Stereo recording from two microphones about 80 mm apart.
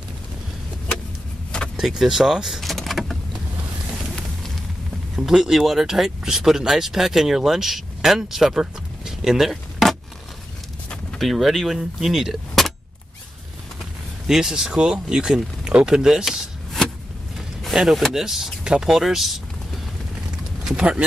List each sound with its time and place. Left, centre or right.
1.8 s speech: centre
5.1 s speech: centre
11.1 s speech: centre
14.2 s speech: centre